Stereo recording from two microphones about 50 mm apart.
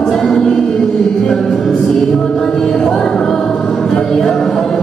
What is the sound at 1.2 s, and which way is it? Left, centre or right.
Music, centre.